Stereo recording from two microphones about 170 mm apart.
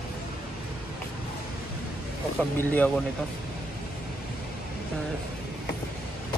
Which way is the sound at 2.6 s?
10° left (ahead or behind).